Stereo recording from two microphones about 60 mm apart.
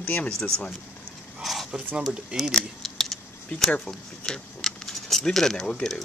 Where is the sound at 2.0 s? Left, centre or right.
Centre.